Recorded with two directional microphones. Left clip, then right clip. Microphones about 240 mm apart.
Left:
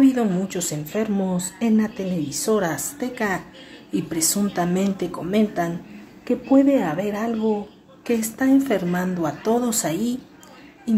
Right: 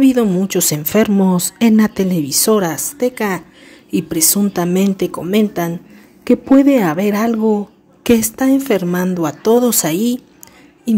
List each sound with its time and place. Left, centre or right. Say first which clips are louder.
0.0 s a woman's voice: right 6 dB; right